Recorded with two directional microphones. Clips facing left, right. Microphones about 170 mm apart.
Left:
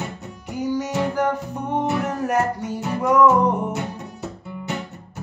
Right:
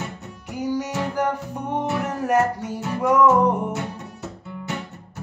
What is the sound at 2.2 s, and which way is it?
Music, 5° right (ahead or behind).